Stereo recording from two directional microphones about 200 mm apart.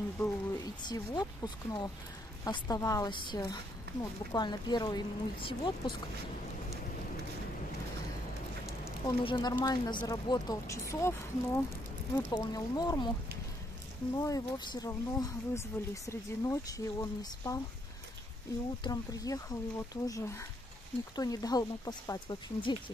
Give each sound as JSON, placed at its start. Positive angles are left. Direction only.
{"t": 0.2, "sound": "a woman's voice", "side_deg": 15}
{"t": 9.0, "sound": "a woman's voice", "side_deg": 20}
{"t": 14.1, "sound": "speech", "side_deg": 20}
{"t": 18.9, "sound": "a woman's voice", "side_deg": 20}